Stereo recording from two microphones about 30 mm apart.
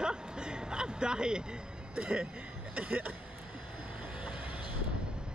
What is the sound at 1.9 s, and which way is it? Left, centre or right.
Speech, right.